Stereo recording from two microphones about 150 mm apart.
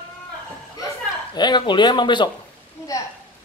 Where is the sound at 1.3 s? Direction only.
30° left (ahead or behind).